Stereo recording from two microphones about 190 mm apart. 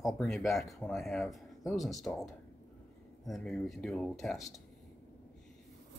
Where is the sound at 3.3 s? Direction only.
Centre (ahead or behind).